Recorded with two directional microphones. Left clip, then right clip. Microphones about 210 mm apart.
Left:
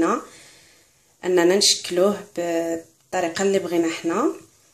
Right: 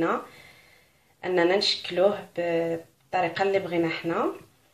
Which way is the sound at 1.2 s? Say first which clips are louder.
Left 5 dB; 50° left (ahead or behind).